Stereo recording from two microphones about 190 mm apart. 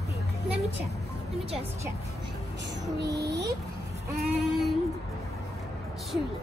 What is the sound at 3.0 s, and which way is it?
Male singing, 60° right (ahead or behind).